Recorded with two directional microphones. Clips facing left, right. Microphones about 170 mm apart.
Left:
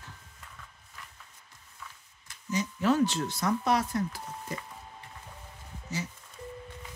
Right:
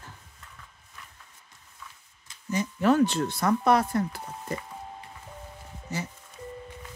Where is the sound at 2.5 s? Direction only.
55° right (ahead or behind).